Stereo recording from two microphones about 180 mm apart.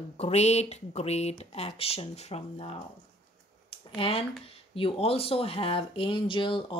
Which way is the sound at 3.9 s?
30° left (ahead or behind).